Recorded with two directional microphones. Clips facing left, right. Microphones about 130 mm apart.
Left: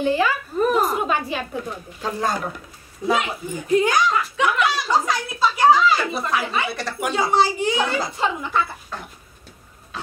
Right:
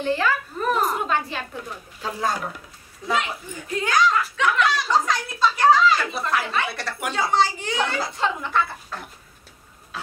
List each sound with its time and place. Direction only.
0.0 s a woman's voice: 10° left (ahead or behind)
2.0 s speech: 5° right (ahead or behind)
3.1 s a woman's voice: 15° left (ahead or behind)